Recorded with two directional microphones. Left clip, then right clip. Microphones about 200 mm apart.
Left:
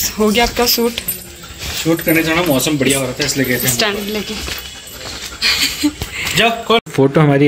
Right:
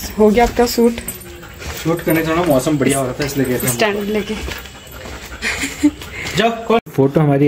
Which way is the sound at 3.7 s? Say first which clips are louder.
Right 1 dB; 10° right (ahead or behind).